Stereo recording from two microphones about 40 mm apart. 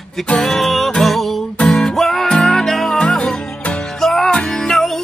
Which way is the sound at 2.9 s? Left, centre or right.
Left.